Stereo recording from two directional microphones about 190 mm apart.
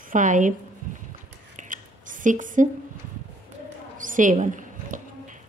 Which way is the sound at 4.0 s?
45° right (ahead or behind).